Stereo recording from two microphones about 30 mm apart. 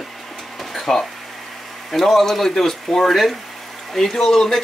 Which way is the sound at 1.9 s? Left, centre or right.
Centre.